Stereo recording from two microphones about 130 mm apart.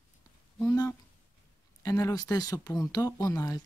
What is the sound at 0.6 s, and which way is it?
Speech, 20° left (ahead or behind).